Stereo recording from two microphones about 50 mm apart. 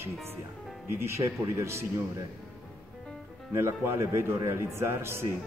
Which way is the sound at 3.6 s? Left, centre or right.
Right.